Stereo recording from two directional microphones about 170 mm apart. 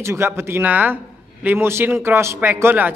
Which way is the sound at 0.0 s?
15° right (ahead or behind).